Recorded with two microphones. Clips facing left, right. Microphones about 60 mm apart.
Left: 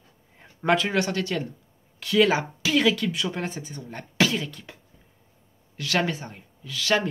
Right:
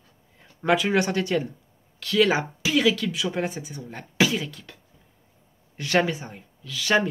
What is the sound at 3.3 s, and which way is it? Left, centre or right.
Speech, centre.